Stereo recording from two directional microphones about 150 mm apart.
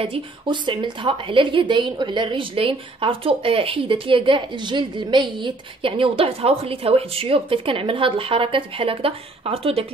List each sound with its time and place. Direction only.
0.0 s a woman's voice: 35° right (ahead or behind)